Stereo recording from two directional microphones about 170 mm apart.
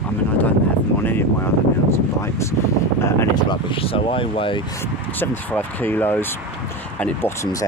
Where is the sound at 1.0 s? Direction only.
10° left (ahead or behind).